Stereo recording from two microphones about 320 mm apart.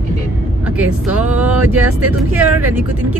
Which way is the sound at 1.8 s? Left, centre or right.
Right.